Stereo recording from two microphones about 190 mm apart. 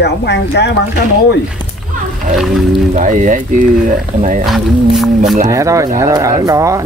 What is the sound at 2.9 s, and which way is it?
Speech, 45° right (ahead or behind).